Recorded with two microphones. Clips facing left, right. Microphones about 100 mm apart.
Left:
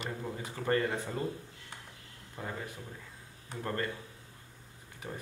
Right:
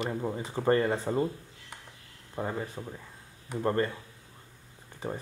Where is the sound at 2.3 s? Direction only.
35° right (ahead or behind).